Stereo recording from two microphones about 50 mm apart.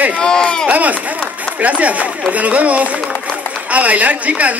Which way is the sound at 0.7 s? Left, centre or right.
Right.